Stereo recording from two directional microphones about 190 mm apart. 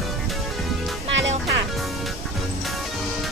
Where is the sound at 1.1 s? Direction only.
75° right (ahead or behind).